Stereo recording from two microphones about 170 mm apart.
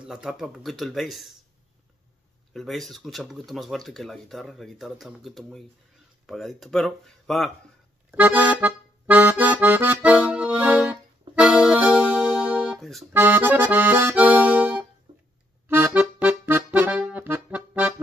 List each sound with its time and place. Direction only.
0.0 s speech: 5° right (ahead or behind)
2.5 s speech: centre (ahead or behind)
8.1 s accordion: 10° right (ahead or behind)
13.1 s accordion: 10° right (ahead or behind)
15.1 s music: 30° right (ahead or behind)
15.7 s accordion: 10° right (ahead or behind)